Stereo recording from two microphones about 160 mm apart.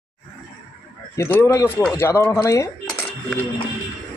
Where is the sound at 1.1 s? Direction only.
15° left (ahead or behind).